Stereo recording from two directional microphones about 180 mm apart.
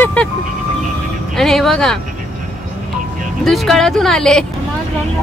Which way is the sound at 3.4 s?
Centre (ahead or behind).